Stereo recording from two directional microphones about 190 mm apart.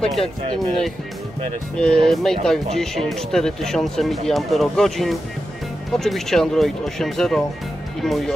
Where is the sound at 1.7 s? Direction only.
5° left (ahead or behind).